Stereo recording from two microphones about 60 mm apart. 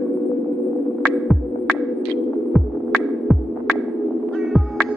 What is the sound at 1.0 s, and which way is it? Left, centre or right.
Music, centre.